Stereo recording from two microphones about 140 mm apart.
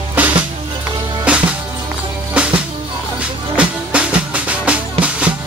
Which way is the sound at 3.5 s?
10° right (ahead or behind).